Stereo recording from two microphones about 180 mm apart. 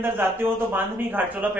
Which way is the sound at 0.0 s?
10° right (ahead or behind).